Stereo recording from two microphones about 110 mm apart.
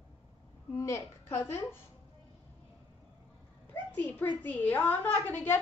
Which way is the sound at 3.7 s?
15° left (ahead or behind).